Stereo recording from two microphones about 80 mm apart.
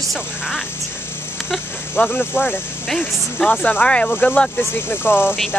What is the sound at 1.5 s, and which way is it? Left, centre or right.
Speech, centre.